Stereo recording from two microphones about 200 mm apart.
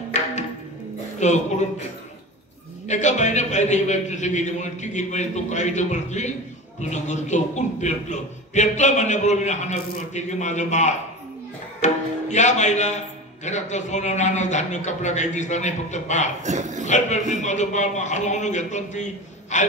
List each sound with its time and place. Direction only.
0.1 s music: 35° left (ahead or behind)
1.2 s speech: 35° left (ahead or behind)
2.9 s speech: 35° left (ahead or behind)
16.4 s a man's voice: 35° right (ahead or behind)
16.8 s speech: 35° left (ahead or behind)